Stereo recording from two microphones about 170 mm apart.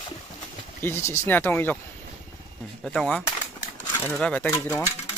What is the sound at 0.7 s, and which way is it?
Speech, 15° left (ahead or behind).